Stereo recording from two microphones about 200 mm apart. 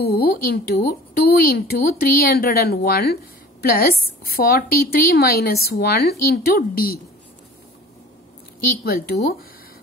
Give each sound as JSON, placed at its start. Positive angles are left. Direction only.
{"t": 0.0, "sound": "a woman's voice", "side_deg": 50}
{"t": 8.6, "sound": "a woman's voice", "side_deg": 50}